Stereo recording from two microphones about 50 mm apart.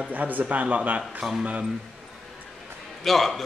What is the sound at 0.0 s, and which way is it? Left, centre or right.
A man's voice, right.